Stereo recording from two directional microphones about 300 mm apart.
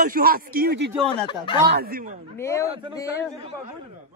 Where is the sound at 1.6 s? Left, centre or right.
Right.